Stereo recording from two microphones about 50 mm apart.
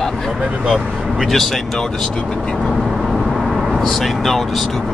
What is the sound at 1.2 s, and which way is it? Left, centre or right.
Speech, centre.